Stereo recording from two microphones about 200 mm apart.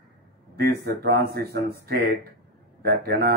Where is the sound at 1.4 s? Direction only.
50° right (ahead or behind).